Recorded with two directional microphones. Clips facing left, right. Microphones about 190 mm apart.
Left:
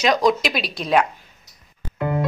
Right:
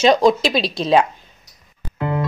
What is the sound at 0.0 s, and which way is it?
Speech, 30° right (ahead or behind).